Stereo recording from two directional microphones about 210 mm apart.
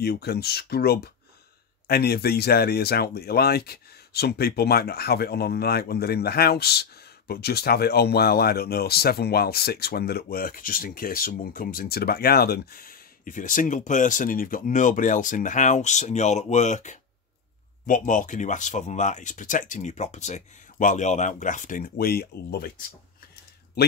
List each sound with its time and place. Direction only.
0.0 s speech: 50° left (ahead or behind)